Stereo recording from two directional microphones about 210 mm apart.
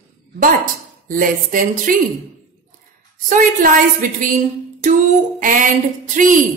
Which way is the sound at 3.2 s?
40° right (ahead or behind).